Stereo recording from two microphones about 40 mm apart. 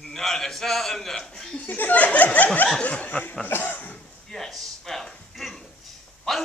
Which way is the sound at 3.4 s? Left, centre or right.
Left.